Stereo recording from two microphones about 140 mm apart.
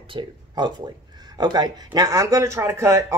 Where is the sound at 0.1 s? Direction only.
35° right (ahead or behind).